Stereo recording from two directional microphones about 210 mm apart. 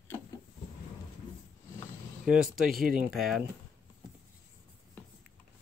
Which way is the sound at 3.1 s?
Centre (ahead or behind).